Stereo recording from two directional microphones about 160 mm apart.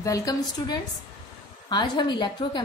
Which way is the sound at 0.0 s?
20° left (ahead or behind).